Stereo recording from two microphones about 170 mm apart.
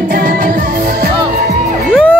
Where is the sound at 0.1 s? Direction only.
55° right (ahead or behind).